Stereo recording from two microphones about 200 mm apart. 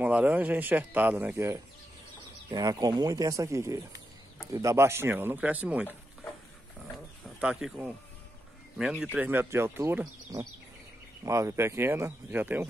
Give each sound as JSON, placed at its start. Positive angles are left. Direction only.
{"t": 0.0, "sound": "speech", "side_deg": -5}
{"t": 7.3, "sound": "speech", "side_deg": -5}